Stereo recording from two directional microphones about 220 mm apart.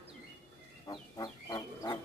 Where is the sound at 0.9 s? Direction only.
20° left (ahead or behind).